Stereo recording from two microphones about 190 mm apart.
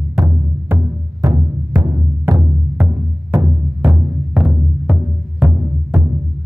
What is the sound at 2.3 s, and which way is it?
Music, 10° right (ahead or behind).